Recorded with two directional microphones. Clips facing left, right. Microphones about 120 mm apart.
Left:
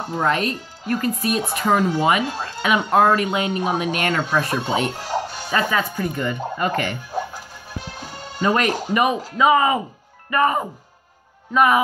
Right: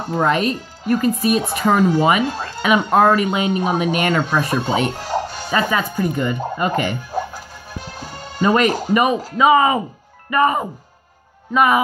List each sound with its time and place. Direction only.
0.2 s speech: 5° right (ahead or behind)
4.6 s speech: centre (ahead or behind)
5.0 s music: 45° right (ahead or behind)
5.5 s speech: 10° right (ahead or behind)
8.4 s speech: 5° right (ahead or behind)
9.4 s speech: 15° right (ahead or behind)